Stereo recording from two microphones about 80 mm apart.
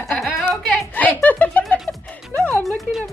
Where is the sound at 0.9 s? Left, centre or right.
Centre.